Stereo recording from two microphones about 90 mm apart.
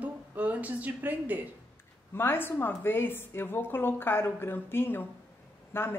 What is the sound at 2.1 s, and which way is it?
Speech, 25° left (ahead or behind).